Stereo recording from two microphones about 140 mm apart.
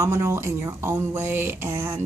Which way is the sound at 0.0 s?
20° right (ahead or behind).